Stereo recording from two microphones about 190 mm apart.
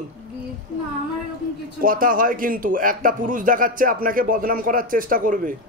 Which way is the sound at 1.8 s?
45° right (ahead or behind).